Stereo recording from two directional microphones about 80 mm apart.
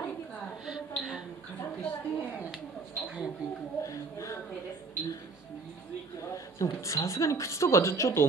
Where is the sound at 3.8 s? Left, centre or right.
Left.